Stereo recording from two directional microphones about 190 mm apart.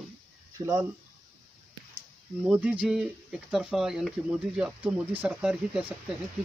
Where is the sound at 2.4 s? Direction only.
5° right (ahead or behind).